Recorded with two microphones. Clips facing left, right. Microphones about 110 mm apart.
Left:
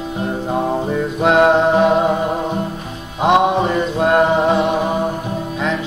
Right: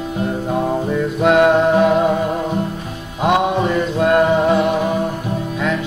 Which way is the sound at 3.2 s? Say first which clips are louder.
Left 2 dB; 25° left (ahead or behind).